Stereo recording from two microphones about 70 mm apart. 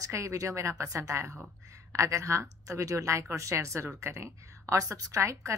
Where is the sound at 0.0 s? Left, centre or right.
Right.